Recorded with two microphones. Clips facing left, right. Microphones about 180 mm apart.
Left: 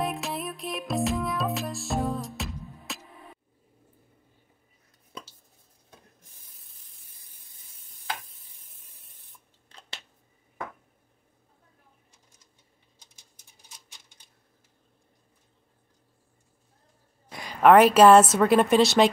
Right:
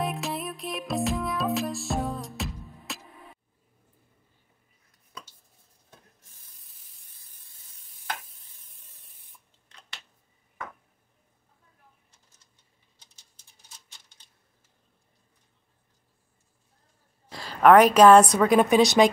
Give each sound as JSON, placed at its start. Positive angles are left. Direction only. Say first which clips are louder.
{"t": 0.0, "sound": "music", "louder": "even", "side_deg": 0}
{"t": 13.9, "sound": "typewriter", "louder": "left 2 dB", "side_deg": 10}
{"t": 17.3, "sound": "a sound", "louder": "even", "side_deg": 20}
{"t": 17.6, "sound": "a woman's voice", "louder": "even", "side_deg": 5}